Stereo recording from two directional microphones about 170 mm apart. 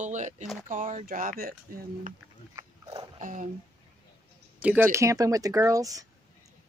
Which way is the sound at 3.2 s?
50° right (ahead or behind).